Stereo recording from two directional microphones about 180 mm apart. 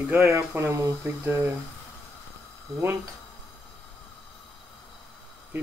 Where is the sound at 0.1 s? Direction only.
15° right (ahead or behind).